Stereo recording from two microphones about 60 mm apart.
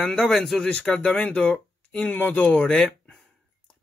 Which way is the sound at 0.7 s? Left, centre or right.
Centre.